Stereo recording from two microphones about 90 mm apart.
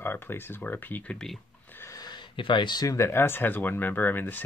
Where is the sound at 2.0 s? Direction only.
55° left (ahead or behind).